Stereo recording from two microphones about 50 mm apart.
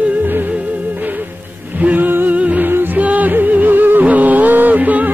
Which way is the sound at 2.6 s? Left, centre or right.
Right.